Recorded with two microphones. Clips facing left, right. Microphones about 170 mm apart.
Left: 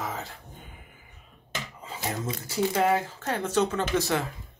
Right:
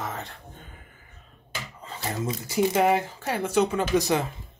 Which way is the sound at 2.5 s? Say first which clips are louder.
Right 3 dB; 15° right (ahead or behind).